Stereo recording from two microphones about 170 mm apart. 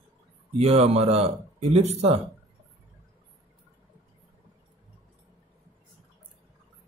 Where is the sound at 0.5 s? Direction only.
40° right (ahead or behind).